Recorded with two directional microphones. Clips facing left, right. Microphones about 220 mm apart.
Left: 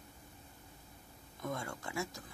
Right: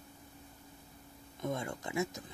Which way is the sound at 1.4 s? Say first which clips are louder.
Right 4 dB; 20° right (ahead or behind).